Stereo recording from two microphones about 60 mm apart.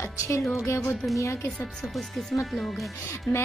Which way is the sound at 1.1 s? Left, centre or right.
Left.